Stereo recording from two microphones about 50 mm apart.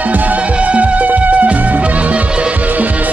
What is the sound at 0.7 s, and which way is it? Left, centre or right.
Music, right.